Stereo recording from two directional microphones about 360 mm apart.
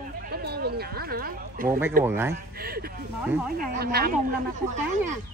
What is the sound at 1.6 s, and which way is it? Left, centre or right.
Speech, centre.